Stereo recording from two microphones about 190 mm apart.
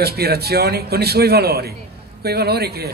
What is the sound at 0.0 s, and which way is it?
A man's voice, 55° right (ahead or behind).